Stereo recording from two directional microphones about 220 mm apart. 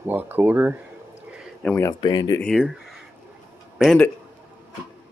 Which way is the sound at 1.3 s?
Centre (ahead or behind).